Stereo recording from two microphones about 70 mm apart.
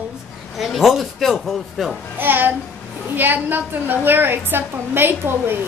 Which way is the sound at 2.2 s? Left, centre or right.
Right.